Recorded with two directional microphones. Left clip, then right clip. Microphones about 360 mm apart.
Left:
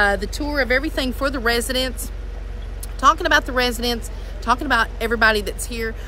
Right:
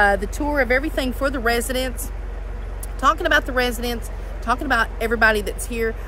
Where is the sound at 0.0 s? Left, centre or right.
Centre.